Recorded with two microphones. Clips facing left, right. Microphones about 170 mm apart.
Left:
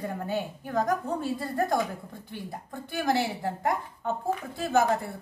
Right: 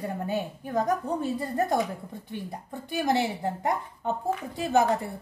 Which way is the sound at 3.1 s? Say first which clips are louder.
Even; 20° right (ahead or behind).